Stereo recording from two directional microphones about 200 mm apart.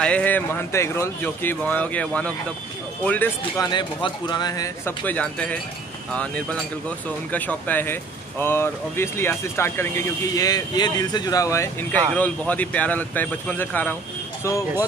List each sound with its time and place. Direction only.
0.0 s speech: 5° left (ahead or behind)
3.6 s speech: 20° left (ahead or behind)